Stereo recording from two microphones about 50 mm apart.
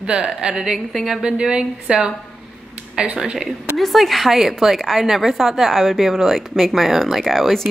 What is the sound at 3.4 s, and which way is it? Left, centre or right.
A woman's voice, centre.